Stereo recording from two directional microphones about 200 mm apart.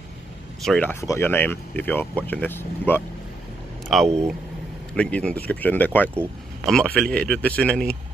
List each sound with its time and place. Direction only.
0.7 s a man's voice: 5° left (ahead or behind)